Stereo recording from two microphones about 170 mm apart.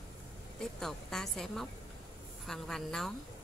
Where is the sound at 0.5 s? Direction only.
Centre (ahead or behind).